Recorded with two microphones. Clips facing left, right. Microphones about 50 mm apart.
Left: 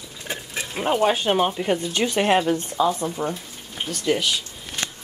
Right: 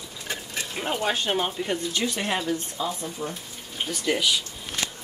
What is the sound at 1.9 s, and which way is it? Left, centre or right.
Speech, left.